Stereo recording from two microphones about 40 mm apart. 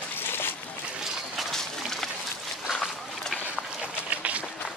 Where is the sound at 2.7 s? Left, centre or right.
Centre.